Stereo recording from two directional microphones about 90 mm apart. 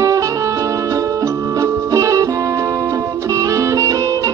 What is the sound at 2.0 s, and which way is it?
Music, 40° right (ahead or behind).